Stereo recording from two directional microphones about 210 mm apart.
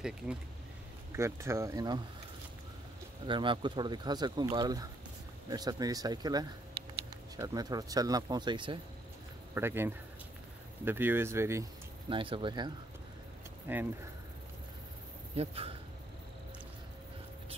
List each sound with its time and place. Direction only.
1.1 s speech: 15° right (ahead or behind)
3.3 s speech: 25° right (ahead or behind)
9.5 s speech: 10° right (ahead or behind)
12.1 s speech: 25° right (ahead or behind)
13.7 s speech: 10° right (ahead or behind)
15.3 s speech: 30° right (ahead or behind)